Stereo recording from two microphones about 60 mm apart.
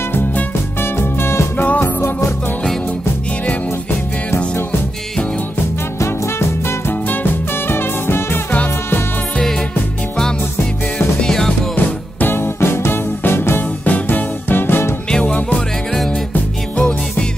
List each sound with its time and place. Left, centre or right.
0.9 s music: left
6.9 s music: left
11.1 s music: centre
11.7 s music: left
15.0 s music: centre
16.7 s music: centre